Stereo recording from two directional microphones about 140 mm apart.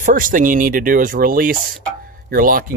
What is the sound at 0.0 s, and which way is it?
Speech, 75° right (ahead or behind).